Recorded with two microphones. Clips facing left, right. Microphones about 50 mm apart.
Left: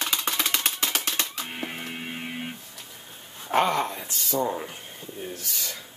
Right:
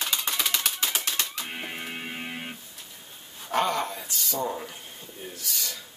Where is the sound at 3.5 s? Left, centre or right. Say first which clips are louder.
Left 3 dB; left.